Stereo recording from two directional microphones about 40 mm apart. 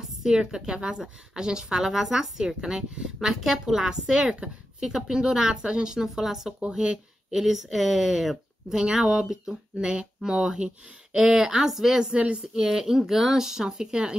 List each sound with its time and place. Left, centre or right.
0.2 s speech: centre
11.1 s speech: centre